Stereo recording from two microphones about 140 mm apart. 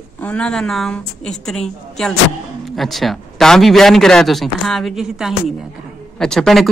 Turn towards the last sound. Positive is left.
turn(degrees=0)  # may be behind; listen again after turning